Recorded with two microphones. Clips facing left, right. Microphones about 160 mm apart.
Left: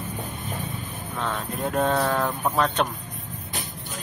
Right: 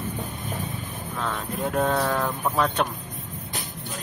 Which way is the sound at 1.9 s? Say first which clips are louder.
Left 1 dB; centre (ahead or behind).